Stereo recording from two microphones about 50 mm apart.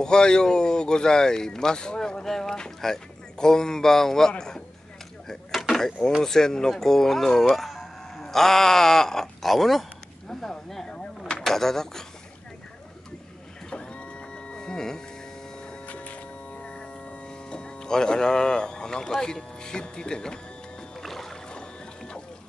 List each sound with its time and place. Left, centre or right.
0.0 s speech: centre
5.7 s speech: centre
11.0 s a sound: centre
13.7 s printer: centre
15.9 s mains hum: left
17.5 s speech: centre
21.0 s music: centre
21.5 s music: centre